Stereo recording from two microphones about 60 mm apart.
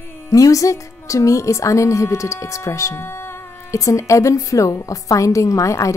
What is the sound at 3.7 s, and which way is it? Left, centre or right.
A woman's voice, left.